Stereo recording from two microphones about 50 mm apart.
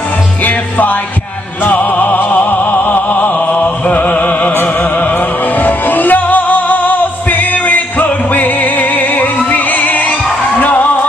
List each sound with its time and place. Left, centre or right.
0.4 s music: left